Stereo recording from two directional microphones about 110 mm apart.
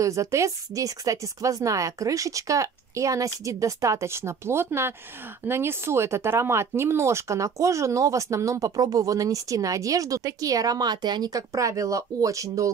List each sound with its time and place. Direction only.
0.0 s speech: 30° right (ahead or behind)